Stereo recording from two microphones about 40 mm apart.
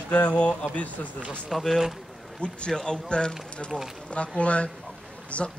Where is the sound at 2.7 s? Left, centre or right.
Left.